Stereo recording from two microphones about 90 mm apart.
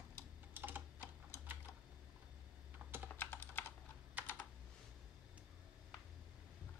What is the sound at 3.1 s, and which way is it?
Computer keyboard, 25° left (ahead or behind).